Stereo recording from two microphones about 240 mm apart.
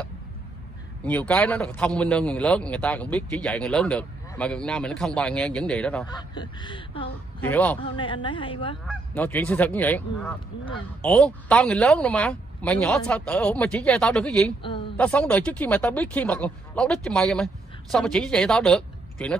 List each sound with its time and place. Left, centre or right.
1.0 s a man's voice: centre
6.0 s speech: centre
7.3 s speech: centre
7.8 s speech: left
8.8 s goose: centre
11.0 s a man's voice: centre